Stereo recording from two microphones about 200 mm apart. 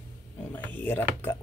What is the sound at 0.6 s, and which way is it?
Speech, 10° left (ahead or behind).